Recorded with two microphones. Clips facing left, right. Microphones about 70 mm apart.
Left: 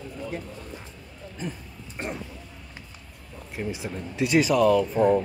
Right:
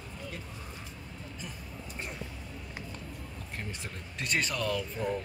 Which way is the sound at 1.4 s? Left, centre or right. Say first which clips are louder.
Left 12 dB; left.